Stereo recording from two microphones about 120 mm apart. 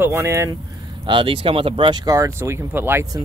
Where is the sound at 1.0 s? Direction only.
45° right (ahead or behind).